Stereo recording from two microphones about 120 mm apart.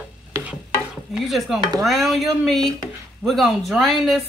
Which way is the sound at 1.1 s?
Centre (ahead or behind).